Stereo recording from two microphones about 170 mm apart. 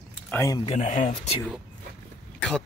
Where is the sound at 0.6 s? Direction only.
40° left (ahead or behind).